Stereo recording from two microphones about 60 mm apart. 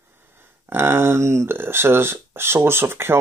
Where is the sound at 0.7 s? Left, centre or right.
Right.